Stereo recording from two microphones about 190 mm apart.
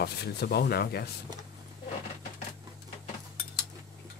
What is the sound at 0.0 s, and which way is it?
Speech, 60° left (ahead or behind).